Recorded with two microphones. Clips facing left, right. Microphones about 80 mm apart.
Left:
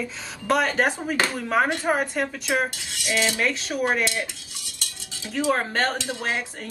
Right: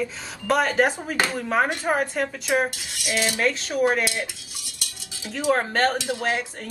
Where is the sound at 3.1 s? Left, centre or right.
Centre.